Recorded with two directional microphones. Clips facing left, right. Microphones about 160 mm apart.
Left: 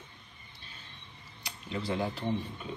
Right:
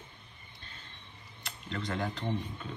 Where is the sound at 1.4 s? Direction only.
5° left (ahead or behind).